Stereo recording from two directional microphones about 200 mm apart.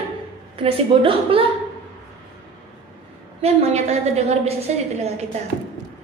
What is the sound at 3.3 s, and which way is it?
A woman's voice, 30° right (ahead or behind).